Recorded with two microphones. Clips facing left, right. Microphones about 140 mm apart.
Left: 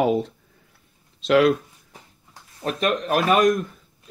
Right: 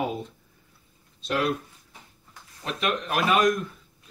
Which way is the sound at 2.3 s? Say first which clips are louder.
Left 6 dB; 40° left (ahead or behind).